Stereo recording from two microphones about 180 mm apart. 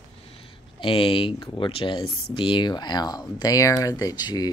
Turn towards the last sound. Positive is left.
turn(degrees=20)  # may be behind; listen again after turning